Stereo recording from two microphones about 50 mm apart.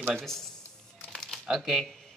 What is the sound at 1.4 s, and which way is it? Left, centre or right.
Speech, centre.